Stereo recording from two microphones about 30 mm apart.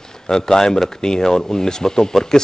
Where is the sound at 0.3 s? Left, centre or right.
Centre.